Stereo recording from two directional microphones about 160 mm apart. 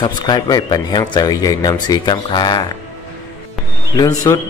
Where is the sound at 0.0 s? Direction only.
25° left (ahead or behind).